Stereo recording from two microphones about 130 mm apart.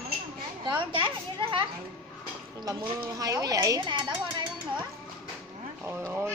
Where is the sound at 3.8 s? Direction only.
40° right (ahead or behind).